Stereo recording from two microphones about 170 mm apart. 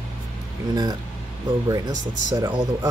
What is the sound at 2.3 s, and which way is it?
Speech, 25° right (ahead or behind).